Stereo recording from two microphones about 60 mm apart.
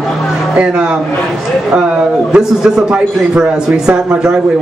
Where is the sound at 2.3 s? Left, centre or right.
Centre.